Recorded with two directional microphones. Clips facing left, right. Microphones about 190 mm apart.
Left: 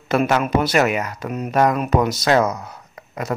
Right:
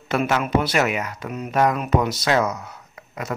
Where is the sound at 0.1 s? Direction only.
40° left (ahead or behind).